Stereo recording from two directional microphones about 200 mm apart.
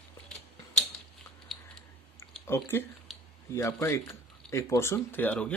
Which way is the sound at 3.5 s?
15° left (ahead or behind).